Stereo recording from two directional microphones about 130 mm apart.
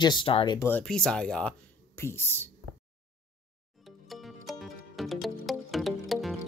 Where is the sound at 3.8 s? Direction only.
Centre (ahead or behind).